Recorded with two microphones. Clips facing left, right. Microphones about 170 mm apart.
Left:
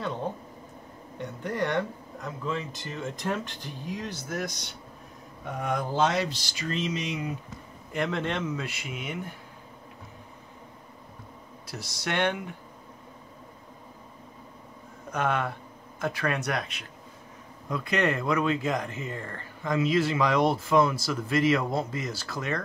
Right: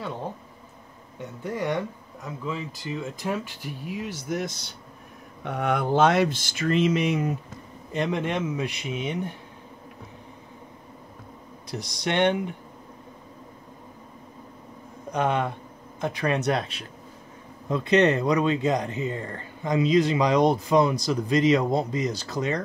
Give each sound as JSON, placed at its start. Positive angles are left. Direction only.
{"t": 1.1, "sound": "speech", "side_deg": -10}
{"t": 4.4, "sound": "speech", "side_deg": -25}
{"t": 5.4, "sound": "speech", "side_deg": -65}
{"t": 7.9, "sound": "speech", "side_deg": -20}
{"t": 11.7, "sound": "speech", "side_deg": -20}
{"t": 15.0, "sound": "speech", "side_deg": -20}